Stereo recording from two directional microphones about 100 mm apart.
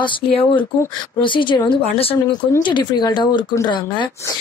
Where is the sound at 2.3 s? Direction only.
50° left (ahead or behind).